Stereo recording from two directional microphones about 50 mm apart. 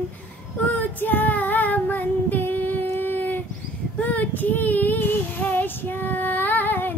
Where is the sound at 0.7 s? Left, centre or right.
Left.